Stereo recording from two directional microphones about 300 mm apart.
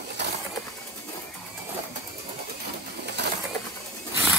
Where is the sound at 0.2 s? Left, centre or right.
Right.